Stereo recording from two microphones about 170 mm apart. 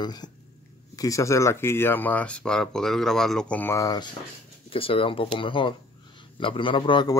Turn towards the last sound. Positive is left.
turn(degrees=30)  # may be behind; listen again after turning